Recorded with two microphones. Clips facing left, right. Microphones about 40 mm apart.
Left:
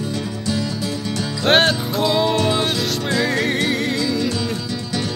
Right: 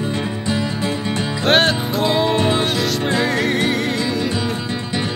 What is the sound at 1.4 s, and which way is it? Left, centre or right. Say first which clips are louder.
Music: even; centre.